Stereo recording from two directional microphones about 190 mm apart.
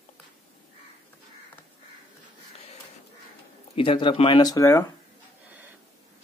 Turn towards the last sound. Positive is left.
turn(degrees=15)  # may be behind; listen again after turning